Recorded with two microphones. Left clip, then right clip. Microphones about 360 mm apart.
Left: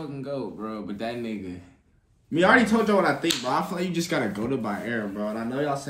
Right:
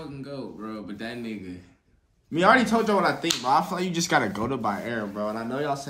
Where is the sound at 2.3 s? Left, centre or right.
Centre.